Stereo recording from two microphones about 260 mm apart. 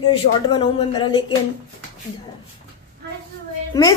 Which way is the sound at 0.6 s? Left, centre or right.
Centre.